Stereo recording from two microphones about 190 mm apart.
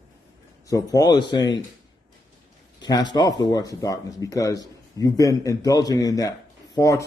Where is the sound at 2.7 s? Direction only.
20° left (ahead or behind).